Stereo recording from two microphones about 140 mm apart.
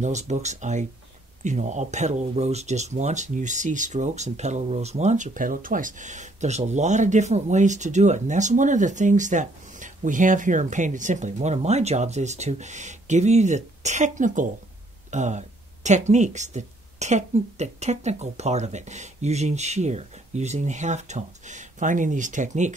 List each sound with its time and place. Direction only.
0.0 s speech: 55° right (ahead or behind)